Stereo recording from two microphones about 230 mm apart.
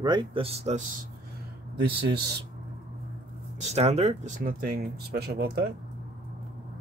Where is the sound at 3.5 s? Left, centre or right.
Right.